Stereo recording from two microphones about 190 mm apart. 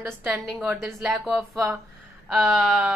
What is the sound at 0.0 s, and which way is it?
Speech, 10° right (ahead or behind).